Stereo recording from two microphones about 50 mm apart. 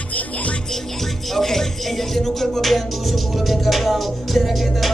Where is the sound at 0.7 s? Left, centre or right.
Centre.